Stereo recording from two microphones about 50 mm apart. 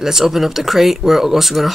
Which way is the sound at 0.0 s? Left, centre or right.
Centre.